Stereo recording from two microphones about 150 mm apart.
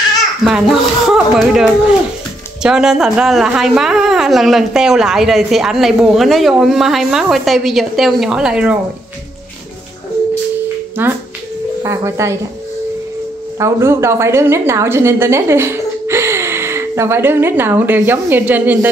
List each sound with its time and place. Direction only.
0.4 s a woman's voice: 5° right (ahead or behind)
11.0 s speech: 15° right (ahead or behind)
13.6 s a woman's voice: 15° right (ahead or behind)